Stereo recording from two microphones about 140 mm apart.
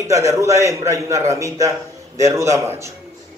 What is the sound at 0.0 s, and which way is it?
Speech, 20° right (ahead or behind).